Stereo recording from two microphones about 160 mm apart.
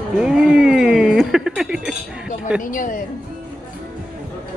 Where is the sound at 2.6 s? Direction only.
55° left (ahead or behind).